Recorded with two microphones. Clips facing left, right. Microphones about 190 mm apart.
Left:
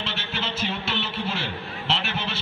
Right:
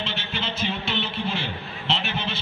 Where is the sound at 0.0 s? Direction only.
5° left (ahead or behind).